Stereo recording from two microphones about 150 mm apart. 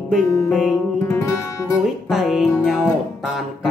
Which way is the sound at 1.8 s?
Centre (ahead or behind).